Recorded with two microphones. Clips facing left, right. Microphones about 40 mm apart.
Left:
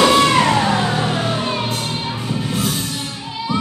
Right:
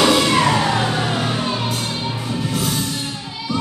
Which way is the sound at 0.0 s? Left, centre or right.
Centre.